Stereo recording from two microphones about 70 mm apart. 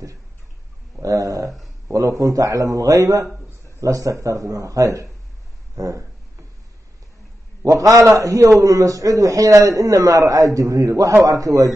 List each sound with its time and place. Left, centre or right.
1.0 s a man's voice: right
7.6 s a man's voice: right